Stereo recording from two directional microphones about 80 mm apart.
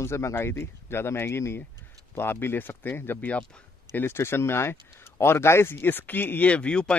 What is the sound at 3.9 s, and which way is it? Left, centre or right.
Speech, left.